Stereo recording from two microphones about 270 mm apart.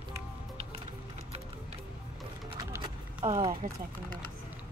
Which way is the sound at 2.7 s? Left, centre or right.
Centre.